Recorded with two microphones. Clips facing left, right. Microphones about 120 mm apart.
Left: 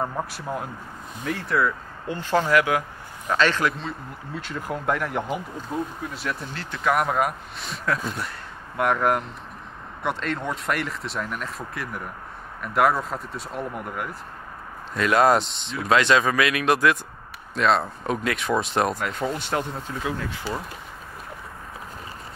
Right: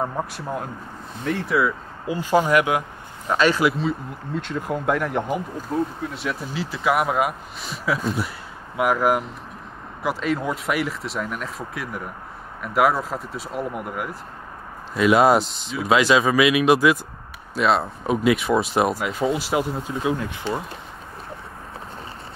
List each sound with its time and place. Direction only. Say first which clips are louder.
0.0 s speech: right 2 dB; 5° right (ahead or behind)
19.9 s speech: right 5 dB; 20° right (ahead or behind)